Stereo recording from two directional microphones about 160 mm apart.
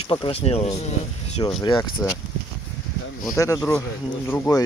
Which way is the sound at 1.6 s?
25° left (ahead or behind).